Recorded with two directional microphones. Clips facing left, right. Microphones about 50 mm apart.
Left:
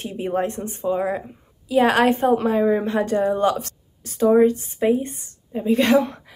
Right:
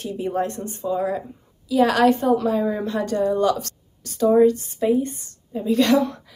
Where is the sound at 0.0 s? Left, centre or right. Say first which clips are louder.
Left 1 dB; left.